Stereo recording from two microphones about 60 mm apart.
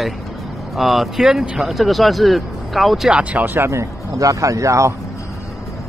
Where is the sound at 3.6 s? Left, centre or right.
Right.